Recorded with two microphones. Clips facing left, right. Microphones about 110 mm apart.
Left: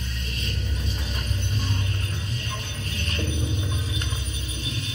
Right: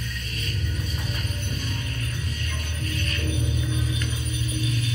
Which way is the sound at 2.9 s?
30° left (ahead or behind).